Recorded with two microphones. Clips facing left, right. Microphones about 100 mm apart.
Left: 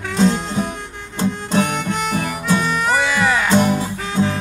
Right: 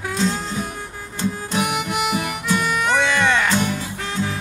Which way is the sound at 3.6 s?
40° left (ahead or behind).